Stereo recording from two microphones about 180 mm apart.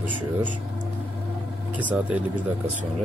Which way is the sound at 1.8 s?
10° right (ahead or behind).